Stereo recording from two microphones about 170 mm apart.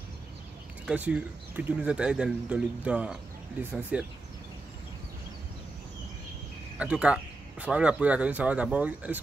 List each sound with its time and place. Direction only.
0.8 s speech: 10° right (ahead or behind)
6.8 s speech: 5° right (ahead or behind)